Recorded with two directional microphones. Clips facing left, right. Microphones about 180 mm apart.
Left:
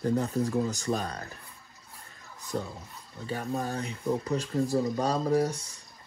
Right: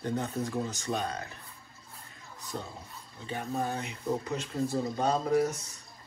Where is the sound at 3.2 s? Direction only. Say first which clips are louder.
Left 1 dB; 35° left (ahead or behind).